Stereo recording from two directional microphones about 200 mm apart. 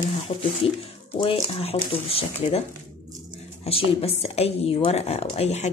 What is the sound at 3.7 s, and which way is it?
Speech, 30° left (ahead or behind).